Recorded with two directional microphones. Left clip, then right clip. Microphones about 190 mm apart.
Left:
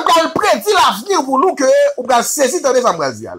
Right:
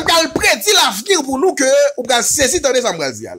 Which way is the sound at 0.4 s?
45° right (ahead or behind).